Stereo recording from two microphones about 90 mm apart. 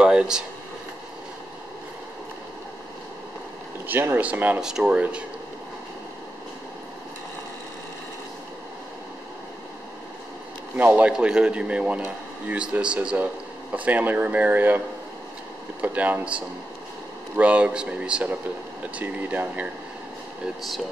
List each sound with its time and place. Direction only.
0.0 s a sound: 10° right (ahead or behind)
3.8 s speech: 20° right (ahead or behind)
4.6 s speech: 5° right (ahead or behind)
10.8 s speech: 20° right (ahead or behind)
15.8 s speech: 20° right (ahead or behind)